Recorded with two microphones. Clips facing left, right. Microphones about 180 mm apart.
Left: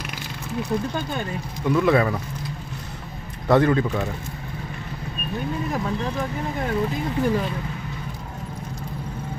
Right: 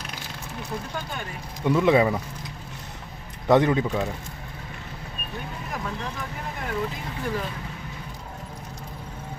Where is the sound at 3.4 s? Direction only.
15° right (ahead or behind).